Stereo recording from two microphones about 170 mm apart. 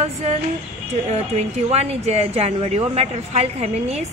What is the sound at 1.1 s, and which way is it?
A woman's voice, 40° right (ahead or behind).